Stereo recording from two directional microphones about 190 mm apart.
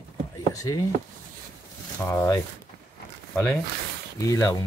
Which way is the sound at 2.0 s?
15° left (ahead or behind).